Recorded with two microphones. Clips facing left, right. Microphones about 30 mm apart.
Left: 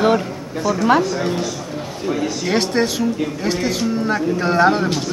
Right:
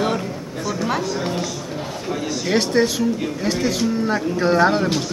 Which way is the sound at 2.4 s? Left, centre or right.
Centre.